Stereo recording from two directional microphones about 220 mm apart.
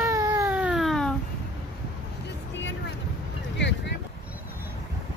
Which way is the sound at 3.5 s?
50° left (ahead or behind).